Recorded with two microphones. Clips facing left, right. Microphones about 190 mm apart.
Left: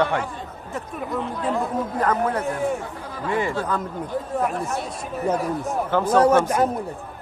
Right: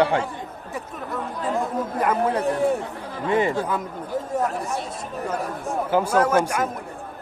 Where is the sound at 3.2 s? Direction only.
20° right (ahead or behind).